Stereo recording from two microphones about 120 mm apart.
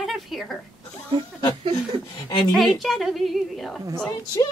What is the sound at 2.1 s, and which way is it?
Speech, 40° left (ahead or behind).